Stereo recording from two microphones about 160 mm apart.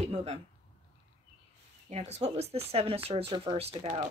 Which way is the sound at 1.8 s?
45° right (ahead or behind).